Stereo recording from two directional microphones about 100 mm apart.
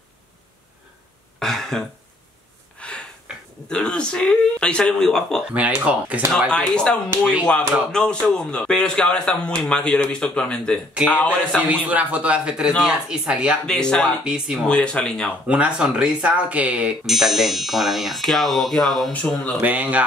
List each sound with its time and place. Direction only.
1.4 s cough: 5° left (ahead or behind)
2.8 s a sound: 10° left (ahead or behind)
3.6 s a man's voice: 10° left (ahead or behind)
5.5 s speech: 15° right (ahead or behind)
6.5 s a man's voice: 10° left (ahead or behind)
11.2 s speech: 15° right (ahead or behind)
13.7 s a man's voice: 10° left (ahead or behind)
14.2 s speech: 5° right (ahead or behind)
14.7 s a man's voice: 10° left (ahead or behind)
15.4 s speech: 10° right (ahead or behind)
17.0 s speech: centre (ahead or behind)
19.6 s speech: 15° right (ahead or behind)